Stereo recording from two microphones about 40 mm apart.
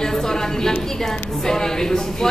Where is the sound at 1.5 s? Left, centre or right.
Centre.